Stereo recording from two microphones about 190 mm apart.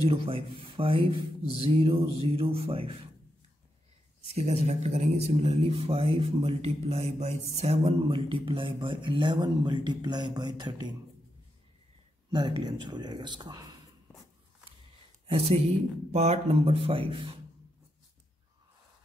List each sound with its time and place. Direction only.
0.0 s speech: 30° right (ahead or behind)
4.3 s speech: 35° right (ahead or behind)
12.3 s speech: 25° right (ahead or behind)
15.2 s speech: 30° right (ahead or behind)